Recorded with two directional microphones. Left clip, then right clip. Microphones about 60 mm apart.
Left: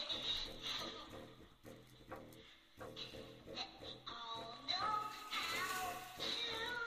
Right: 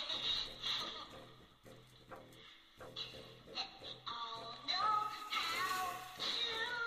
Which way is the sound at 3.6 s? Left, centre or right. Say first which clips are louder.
Right 4 dB; right.